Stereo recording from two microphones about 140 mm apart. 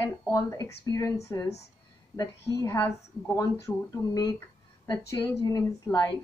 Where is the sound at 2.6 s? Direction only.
20° left (ahead or behind).